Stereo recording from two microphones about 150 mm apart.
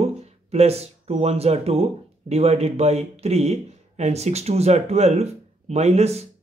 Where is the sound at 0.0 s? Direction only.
45° right (ahead or behind).